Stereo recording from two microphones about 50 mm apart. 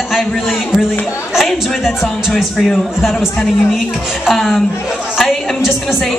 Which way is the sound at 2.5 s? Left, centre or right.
Centre.